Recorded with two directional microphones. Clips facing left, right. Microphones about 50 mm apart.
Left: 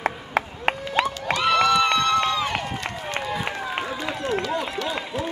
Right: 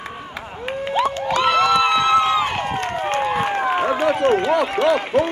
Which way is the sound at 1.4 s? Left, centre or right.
Centre.